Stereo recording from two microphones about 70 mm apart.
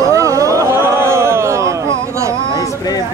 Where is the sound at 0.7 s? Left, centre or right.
Right.